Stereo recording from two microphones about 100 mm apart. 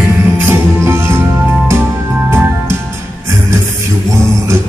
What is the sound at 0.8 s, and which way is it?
Music, 25° right (ahead or behind).